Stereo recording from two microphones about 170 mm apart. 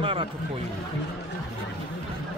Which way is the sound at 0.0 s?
30° right (ahead or behind).